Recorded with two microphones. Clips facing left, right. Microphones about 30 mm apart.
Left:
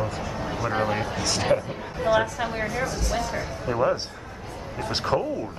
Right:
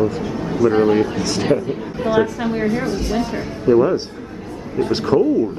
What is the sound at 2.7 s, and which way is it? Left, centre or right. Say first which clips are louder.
Speech: right 7 dB; right.